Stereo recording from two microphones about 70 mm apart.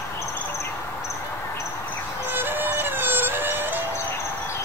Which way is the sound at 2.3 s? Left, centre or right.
Right.